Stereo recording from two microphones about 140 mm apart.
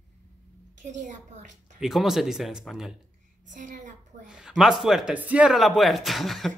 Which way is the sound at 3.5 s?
65° right (ahead or behind).